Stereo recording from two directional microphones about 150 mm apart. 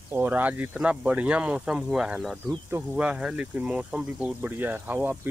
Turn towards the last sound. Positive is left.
turn(degrees=-10)  # may be behind; listen again after turning